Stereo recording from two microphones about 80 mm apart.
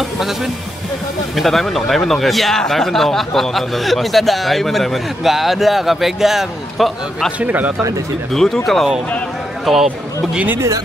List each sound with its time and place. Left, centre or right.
1.3 s speech: centre
7.3 s speech: right
8.3 s speech: centre
9.7 s speech: centre